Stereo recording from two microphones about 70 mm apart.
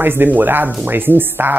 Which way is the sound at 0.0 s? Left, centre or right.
Right.